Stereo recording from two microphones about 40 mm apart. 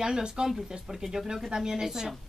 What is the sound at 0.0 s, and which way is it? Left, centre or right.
A woman's voice, centre.